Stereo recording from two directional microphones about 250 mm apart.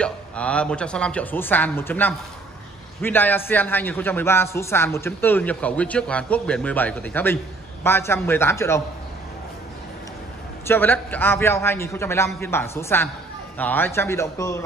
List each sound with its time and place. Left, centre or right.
0.0 s a man's voice: centre
10.7 s a man's voice: centre